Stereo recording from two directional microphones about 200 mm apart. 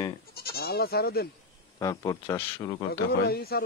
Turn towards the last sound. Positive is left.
turn(degrees=50)  # may be behind; listen again after turning